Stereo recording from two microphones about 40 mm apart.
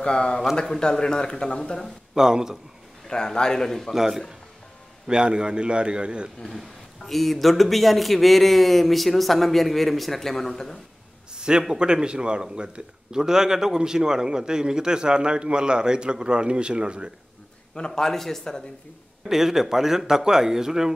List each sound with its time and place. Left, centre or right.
0.0 s speech: left
2.1 s speech: centre
3.1 s speech: centre
3.9 s speech: centre
5.0 s a man's voice: right
6.5 s a man's voice: centre
11.3 s a sound: right
11.8 s a man's voice: right
17.7 s speech: centre
19.2 s speech: centre